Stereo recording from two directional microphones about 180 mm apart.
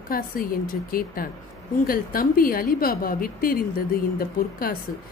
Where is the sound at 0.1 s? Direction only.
55° left (ahead or behind).